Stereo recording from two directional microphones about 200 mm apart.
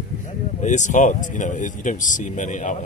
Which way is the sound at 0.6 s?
35° left (ahead or behind).